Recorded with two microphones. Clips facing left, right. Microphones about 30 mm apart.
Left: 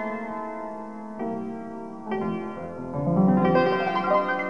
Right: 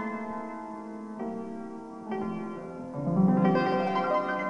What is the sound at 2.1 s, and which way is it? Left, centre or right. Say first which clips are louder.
Music: left 5 dB; left.